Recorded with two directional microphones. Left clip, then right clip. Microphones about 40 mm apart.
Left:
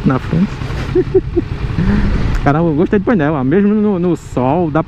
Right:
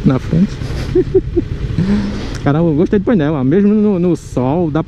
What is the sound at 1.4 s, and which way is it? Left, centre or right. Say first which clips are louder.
Vehicle: even; left.